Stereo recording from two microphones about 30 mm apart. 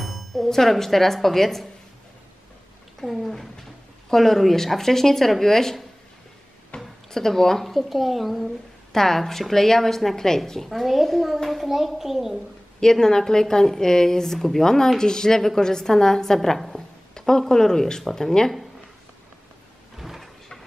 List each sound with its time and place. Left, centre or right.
0.0 s music: centre
0.5 s speech: centre
3.0 s speech: centre
6.7 s a sound: left
7.1 s speech: centre
8.9 s speech: centre
10.7 s speech: centre
11.7 s a child's voice: centre
13.0 s a woman's voice: centre
16.3 s a woman's voice: centre
16.7 s a sound: centre
18.1 s a woman's voice: centre